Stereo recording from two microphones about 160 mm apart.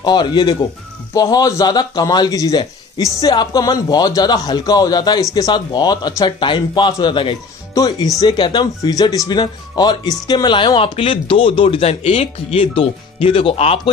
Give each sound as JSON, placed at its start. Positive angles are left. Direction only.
{"t": 0.0, "sound": "a man's voice", "side_deg": 30}